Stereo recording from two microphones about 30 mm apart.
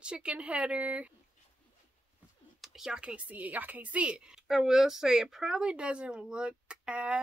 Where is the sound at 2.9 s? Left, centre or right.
Right.